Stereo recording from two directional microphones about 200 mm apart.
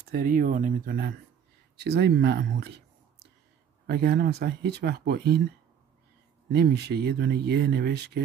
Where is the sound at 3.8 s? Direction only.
55° right (ahead or behind).